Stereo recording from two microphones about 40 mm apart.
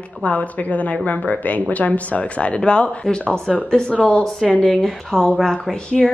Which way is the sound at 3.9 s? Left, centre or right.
Left.